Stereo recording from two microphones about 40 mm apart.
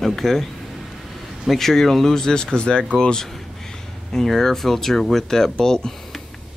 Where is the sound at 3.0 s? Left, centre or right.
Centre.